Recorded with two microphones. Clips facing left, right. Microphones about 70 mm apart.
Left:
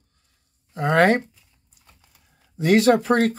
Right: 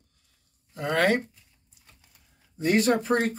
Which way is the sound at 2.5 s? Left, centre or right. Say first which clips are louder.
Left 6 dB; left.